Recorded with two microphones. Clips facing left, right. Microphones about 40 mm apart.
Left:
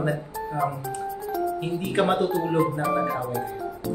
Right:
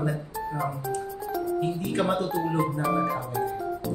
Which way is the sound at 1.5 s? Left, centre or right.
Left.